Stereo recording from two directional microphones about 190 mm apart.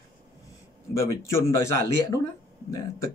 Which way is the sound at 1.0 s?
15° left (ahead or behind).